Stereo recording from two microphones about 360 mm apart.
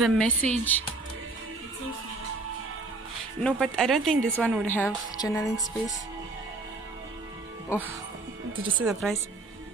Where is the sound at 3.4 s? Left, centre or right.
Centre.